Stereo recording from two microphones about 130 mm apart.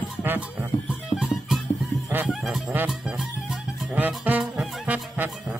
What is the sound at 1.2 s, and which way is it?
Music, centre (ahead or behind).